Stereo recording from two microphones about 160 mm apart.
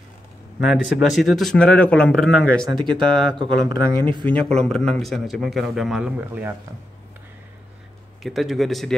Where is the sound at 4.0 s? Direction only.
30° right (ahead or behind).